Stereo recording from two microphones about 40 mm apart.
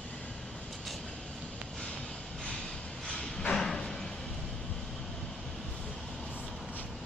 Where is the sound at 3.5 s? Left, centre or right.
Centre.